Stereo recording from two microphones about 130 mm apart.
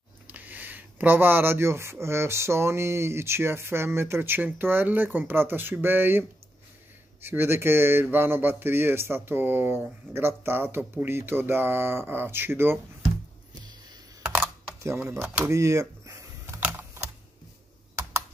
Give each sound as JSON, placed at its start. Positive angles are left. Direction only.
{"t": 0.3, "sound": "speech", "side_deg": -15}
{"t": 14.2, "sound": "computer keyboard", "side_deg": -5}
{"t": 15.2, "sound": "speech", "side_deg": -10}
{"t": 15.5, "sound": "a sound", "side_deg": -25}
{"t": 16.5, "sound": "typing", "side_deg": -15}